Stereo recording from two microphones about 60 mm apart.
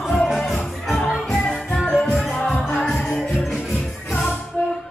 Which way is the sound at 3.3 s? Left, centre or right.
Centre.